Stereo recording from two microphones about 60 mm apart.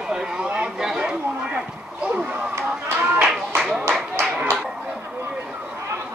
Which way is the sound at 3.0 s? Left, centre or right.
Right.